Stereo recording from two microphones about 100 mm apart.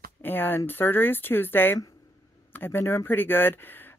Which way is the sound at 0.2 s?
20° left (ahead or behind).